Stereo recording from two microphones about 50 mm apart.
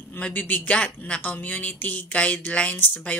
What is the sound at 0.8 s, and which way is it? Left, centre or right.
Speech, centre.